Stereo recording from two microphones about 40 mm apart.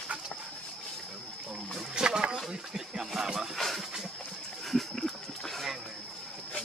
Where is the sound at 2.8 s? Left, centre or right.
Centre.